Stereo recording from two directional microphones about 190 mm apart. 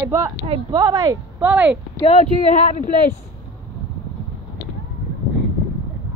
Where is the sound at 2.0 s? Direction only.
40° left (ahead or behind).